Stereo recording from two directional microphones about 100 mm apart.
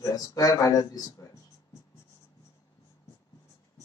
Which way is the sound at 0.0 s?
35° left (ahead or behind).